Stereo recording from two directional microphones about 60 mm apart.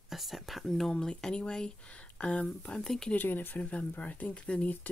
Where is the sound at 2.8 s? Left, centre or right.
Centre.